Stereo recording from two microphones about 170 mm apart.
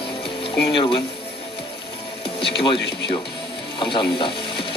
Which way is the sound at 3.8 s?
30° left (ahead or behind).